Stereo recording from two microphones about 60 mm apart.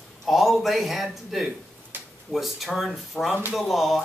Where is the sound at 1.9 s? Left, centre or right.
Right.